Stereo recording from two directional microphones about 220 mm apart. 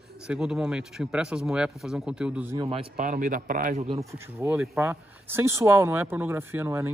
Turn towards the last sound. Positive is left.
turn(degrees=-10)  # may be behind; listen again after turning